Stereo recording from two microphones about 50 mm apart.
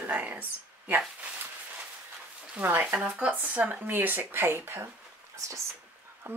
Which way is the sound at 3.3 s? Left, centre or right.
Right.